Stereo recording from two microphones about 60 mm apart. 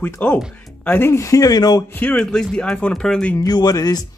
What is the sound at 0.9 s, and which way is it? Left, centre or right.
Speech, left.